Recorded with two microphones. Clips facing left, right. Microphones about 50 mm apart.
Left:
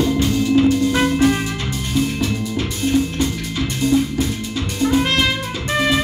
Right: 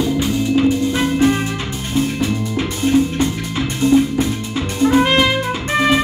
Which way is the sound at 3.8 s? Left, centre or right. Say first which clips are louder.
Right 4 dB; right.